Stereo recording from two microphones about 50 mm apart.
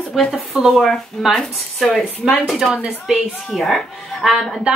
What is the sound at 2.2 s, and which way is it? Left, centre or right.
A woman's voice, centre.